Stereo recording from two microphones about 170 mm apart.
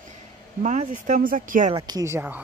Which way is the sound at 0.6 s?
45° right (ahead or behind).